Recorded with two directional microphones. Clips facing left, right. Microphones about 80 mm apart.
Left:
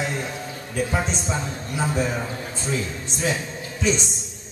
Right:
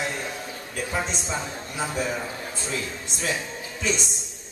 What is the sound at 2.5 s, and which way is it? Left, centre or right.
Speech, left.